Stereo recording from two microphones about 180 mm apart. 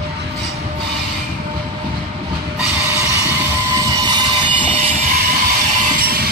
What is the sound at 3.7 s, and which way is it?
Train, 20° right (ahead or behind).